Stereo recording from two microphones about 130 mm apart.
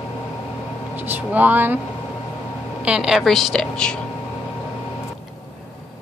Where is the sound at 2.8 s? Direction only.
5° right (ahead or behind).